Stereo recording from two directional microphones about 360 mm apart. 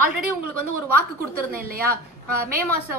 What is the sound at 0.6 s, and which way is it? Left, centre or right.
Speech, left.